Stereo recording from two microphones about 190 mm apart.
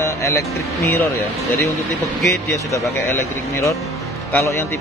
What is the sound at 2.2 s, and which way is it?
Speech, 15° left (ahead or behind).